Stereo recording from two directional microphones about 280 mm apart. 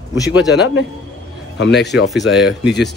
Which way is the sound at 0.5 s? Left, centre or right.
Left.